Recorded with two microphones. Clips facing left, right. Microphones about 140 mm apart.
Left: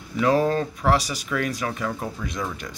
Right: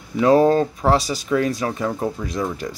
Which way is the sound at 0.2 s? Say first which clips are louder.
Right 6 dB; 30° right (ahead or behind).